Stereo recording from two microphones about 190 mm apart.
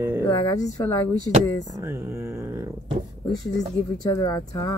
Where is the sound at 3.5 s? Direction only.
20° left (ahead or behind).